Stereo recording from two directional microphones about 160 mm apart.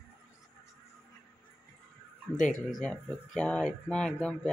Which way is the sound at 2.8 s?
5° left (ahead or behind).